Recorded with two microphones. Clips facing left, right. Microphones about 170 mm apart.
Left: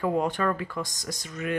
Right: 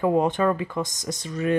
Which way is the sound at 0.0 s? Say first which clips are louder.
Right 5 dB; 20° right (ahead or behind).